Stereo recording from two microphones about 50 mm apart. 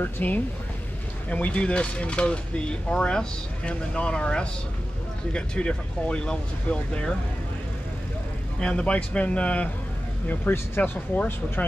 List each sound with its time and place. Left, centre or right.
0.0 s speech: left
8.5 s speech: centre
10.5 s speech: left